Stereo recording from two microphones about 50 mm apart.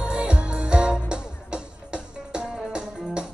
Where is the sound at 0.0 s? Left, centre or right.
Right.